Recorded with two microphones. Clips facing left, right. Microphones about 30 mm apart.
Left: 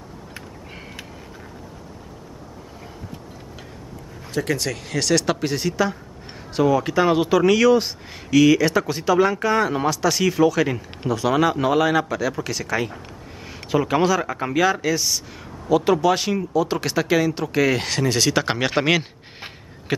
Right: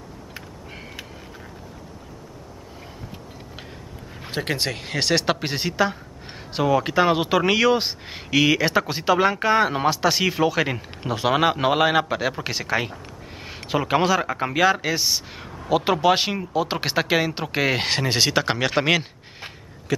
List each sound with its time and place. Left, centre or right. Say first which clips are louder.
4.3 s speech: left 2 dB; right
18.3 s speech: even; centre